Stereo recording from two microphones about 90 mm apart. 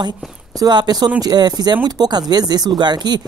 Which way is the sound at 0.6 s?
50° right (ahead or behind).